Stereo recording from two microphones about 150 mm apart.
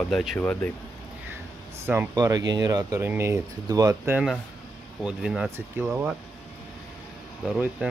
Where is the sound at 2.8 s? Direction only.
15° right (ahead or behind).